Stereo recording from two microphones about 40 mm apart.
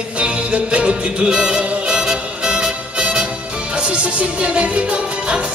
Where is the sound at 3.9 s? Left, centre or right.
Right.